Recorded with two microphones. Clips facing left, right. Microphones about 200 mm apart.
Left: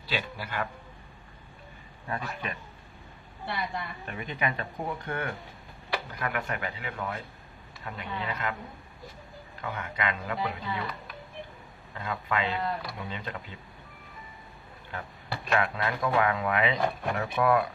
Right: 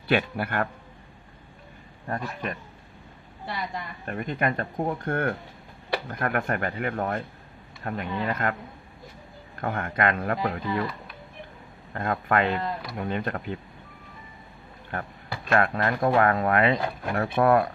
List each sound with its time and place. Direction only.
0.1 s speech: 55° right (ahead or behind)
2.0 s speech: 45° right (ahead or behind)
4.0 s speech: 50° right (ahead or behind)
9.6 s speech: 50° right (ahead or behind)
11.9 s speech: 55° right (ahead or behind)
14.9 s speech: 55° right (ahead or behind)